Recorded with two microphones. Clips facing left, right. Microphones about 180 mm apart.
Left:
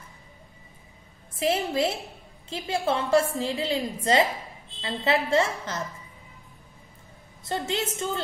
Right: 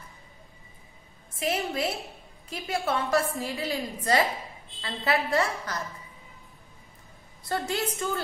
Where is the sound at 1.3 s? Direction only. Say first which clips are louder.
Left 4 dB; 30° left (ahead or behind).